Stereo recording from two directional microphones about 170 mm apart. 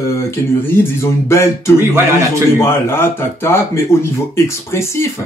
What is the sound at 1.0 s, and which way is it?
Speech, 15° left (ahead or behind).